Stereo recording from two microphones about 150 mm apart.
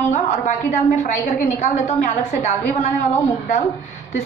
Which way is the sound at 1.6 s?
55° left (ahead or behind).